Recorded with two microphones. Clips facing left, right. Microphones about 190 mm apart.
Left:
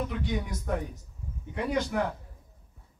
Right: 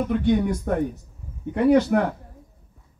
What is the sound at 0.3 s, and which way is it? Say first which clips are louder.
Speech: right 10 dB; 60° right (ahead or behind).